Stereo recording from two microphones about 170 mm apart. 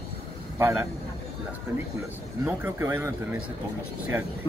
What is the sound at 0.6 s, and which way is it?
Speech, 15° right (ahead or behind).